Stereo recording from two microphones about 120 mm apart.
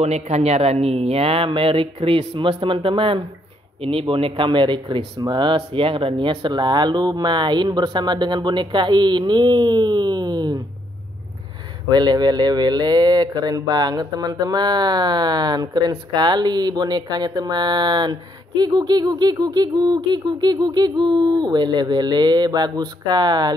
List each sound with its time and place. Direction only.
0.0 s speech: 65° right (ahead or behind); by 10.6 s 35° right (ahead or behind)
11.9 s speech: 35° right (ahead or behind)